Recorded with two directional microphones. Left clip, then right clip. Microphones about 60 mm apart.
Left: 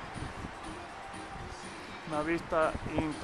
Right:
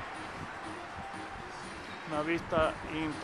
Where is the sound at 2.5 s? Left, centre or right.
Left.